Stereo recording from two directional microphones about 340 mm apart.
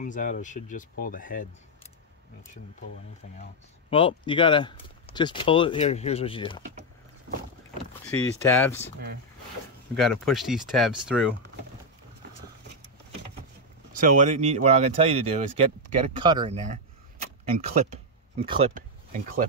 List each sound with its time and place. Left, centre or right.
0.0 s speech: left
3.9 s speech: centre
8.1 s speech: centre
9.9 s speech: centre
13.9 s speech: right
16.2 s arrow: centre
17.8 s a sound: centre